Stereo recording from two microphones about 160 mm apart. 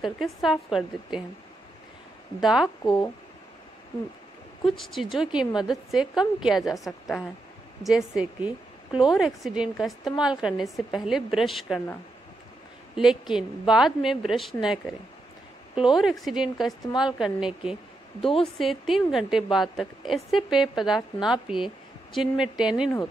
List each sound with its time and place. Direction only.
0.0 s a woman's voice: centre (ahead or behind)
2.4 s a woman's voice: centre (ahead or behind)
2.8 s speech: 25° left (ahead or behind)
4.6 s a woman's voice: centre (ahead or behind)
12.9 s a woman's voice: 5° right (ahead or behind)